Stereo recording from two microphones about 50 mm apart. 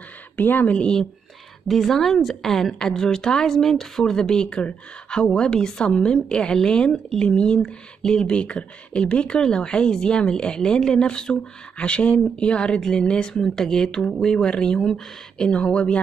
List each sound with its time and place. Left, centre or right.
0.4 s speech: left
0.7 s speech: centre
1.7 s a woman's voice: centre
15.5 s speech: left